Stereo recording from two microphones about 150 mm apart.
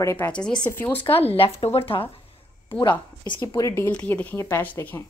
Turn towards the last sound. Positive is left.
turn(degrees=15)  # may be behind; listen again after turning